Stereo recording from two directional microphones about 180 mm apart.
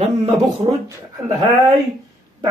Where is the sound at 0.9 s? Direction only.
20° right (ahead or behind).